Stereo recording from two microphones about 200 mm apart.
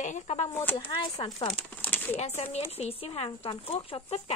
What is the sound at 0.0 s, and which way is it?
Speech, 35° left (ahead or behind).